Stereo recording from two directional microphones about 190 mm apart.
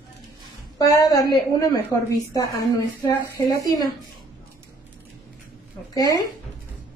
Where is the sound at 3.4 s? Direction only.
20° left (ahead or behind).